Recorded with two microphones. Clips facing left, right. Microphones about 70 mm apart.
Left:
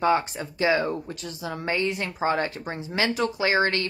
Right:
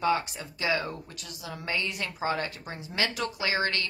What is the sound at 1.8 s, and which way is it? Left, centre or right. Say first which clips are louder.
Speech: left 5 dB; left.